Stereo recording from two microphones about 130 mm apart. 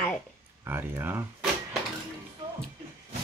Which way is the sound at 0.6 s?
20° right (ahead or behind).